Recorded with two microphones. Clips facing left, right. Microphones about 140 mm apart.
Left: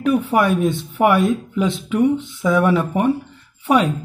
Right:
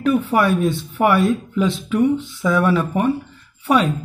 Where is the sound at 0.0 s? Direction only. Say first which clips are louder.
Even; 15° left (ahead or behind).